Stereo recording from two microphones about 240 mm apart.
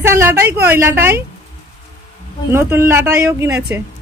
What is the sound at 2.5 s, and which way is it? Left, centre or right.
A woman's voice, centre.